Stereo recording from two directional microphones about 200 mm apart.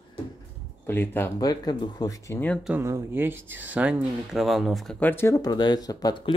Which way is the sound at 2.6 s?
10° right (ahead or behind).